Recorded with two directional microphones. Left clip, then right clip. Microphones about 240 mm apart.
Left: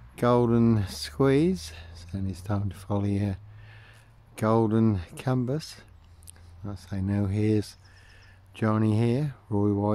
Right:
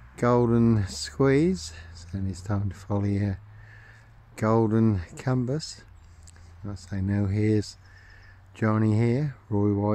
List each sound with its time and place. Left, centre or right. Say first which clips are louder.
0.1 s speech: even; centre